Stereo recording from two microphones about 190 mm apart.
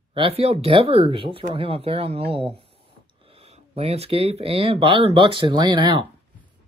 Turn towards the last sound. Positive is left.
turn(degrees=-25)  # may be behind; listen again after turning